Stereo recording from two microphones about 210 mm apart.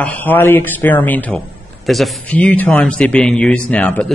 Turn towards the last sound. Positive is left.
turn(degrees=5)  # may be behind; listen again after turning